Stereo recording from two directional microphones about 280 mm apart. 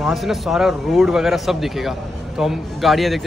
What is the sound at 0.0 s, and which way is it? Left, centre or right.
A man's voice, centre.